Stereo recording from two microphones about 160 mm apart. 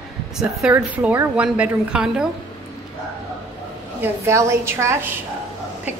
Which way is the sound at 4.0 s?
20° right (ahead or behind).